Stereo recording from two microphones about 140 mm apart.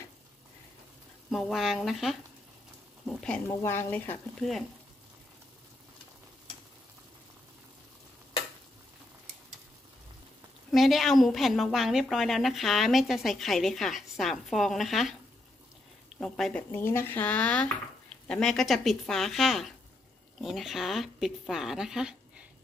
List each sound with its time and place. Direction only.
1.3 s a woman's voice: centre (ahead or behind)
3.1 s a sound: 10° left (ahead or behind)
3.4 s speech: 15° left (ahead or behind)
4.4 s a woman's voice: centre (ahead or behind)
10.7 s a woman's voice: centre (ahead or behind)
16.2 s a woman's voice: 5° left (ahead or behind)
16.7 s a woman's voice: 15° left (ahead or behind); by 22.5 s 5° right (ahead or behind)